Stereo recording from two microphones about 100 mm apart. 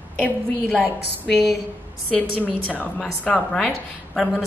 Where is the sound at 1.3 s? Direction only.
Centre (ahead or behind).